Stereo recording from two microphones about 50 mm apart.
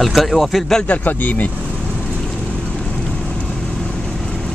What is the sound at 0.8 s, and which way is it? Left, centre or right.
Speech, left.